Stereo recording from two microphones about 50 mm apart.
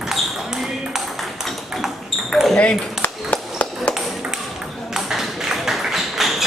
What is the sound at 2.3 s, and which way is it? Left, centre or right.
Basketball bounce, centre.